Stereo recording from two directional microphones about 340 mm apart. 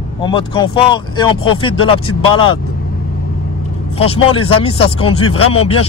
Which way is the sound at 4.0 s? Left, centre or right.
Centre.